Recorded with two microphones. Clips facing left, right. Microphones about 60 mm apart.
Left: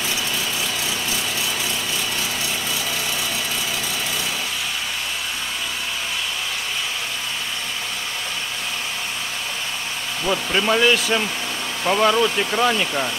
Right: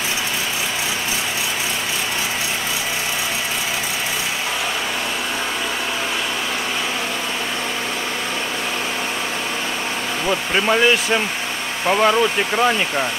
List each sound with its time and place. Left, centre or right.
10.2 s speech: centre